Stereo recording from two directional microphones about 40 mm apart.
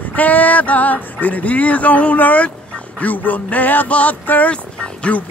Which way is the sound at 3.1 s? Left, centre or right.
Left.